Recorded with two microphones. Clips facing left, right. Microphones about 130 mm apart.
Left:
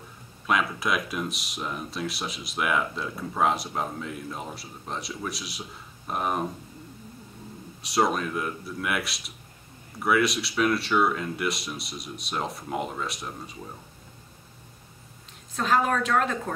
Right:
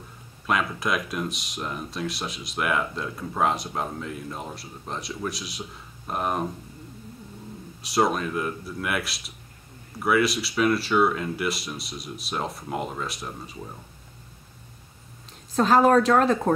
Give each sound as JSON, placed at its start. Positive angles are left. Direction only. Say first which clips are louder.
{"t": 0.5, "sound": "speech", "louder": "even", "side_deg": 0}
{"t": 7.8, "sound": "speech", "louder": "right 1 dB", "side_deg": 0}
{"t": 15.5, "sound": "a woman's voice", "louder": "right 7 dB", "side_deg": -35}